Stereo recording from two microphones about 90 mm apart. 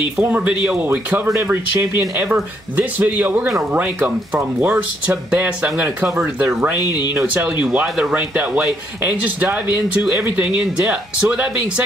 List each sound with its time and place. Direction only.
0.2 s speech: 15° right (ahead or behind)